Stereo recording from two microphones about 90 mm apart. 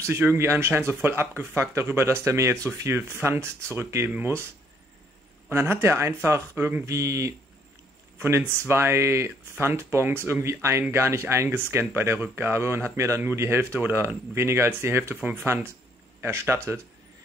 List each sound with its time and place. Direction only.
0.0 s speech: 30° right (ahead or behind)
5.5 s speech: 25° right (ahead or behind)